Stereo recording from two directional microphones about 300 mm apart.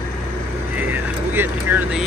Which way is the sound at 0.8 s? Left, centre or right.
Centre.